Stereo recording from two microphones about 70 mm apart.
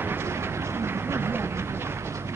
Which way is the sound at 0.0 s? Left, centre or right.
Right.